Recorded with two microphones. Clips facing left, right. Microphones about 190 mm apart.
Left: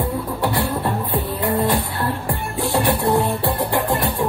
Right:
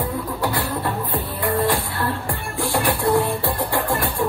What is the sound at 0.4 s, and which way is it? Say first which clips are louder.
Music: left 3 dB; 25° left (ahead or behind).